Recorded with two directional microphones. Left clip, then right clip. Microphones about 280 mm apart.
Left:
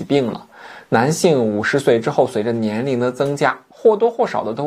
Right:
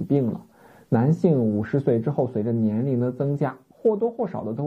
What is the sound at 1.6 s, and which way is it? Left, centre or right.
Speech, centre.